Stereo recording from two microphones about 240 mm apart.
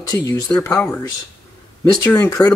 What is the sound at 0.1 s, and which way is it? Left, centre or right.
Speech, centre.